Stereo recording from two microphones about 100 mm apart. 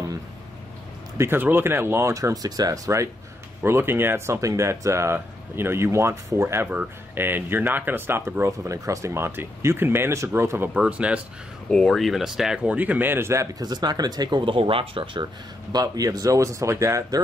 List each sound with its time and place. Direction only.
1.1 s speech: 25° right (ahead or behind)
3.6 s speech: 25° right (ahead or behind)
10.7 s speech: 10° right (ahead or behind)
11.7 s speech: 5° left (ahead or behind); by 13.7 s 30° right (ahead or behind)
13.7 s speech: 40° right (ahead or behind)
14.4 s speech: 60° right (ahead or behind)
15.7 s speech: 35° right (ahead or behind)